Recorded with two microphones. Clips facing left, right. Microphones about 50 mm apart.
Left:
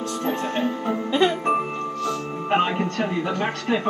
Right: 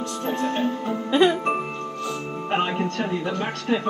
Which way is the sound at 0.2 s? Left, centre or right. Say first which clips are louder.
Right 1 dB; left.